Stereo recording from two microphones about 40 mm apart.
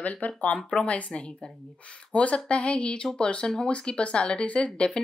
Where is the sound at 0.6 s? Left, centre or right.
Left.